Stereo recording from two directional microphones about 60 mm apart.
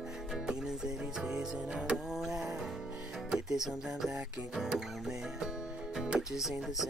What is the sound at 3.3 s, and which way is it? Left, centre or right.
Speech, centre.